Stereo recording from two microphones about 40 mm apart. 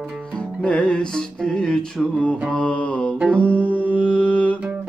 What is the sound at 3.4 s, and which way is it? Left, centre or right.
Music, left.